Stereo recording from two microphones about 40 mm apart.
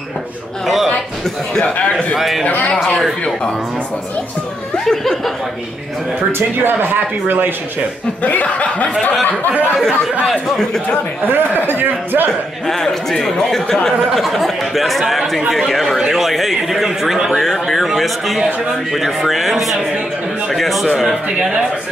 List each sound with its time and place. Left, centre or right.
1.6 s speech: left
2.1 s speech: centre
2.4 s a man's voice: left
4.8 s speech: centre
6.6 s a man's voice: right
10.2 s a man's voice: centre
11.2 s a man's voice: right
12.3 s a man's voice: centre
14.1 s speech: centre
17.4 s speech: centre